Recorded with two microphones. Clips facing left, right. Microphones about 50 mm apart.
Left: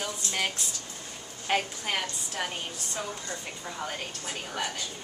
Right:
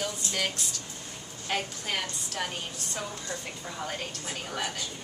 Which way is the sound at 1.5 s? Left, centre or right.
Centre.